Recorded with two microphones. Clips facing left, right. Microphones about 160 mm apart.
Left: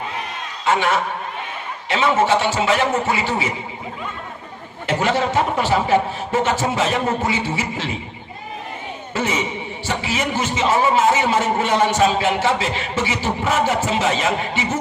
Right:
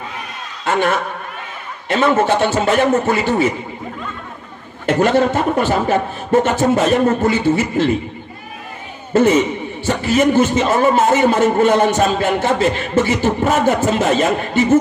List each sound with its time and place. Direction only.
0.7 s a man's voice: 50° right (ahead or behind)
4.8 s a man's voice: 50° right (ahead or behind)
9.1 s a man's voice: 50° right (ahead or behind)